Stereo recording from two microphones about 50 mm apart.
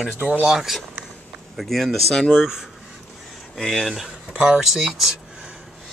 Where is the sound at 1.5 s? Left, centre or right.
Centre.